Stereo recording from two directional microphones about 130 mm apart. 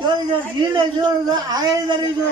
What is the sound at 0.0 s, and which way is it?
A man's voice, 35° right (ahead or behind).